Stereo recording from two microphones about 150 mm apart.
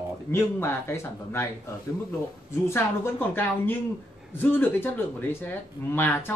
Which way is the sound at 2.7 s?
15° left (ahead or behind).